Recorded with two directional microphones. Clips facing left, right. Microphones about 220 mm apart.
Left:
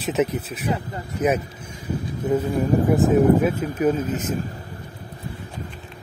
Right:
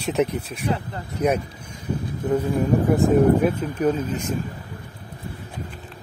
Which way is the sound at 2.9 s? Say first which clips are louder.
Even; centre (ahead or behind).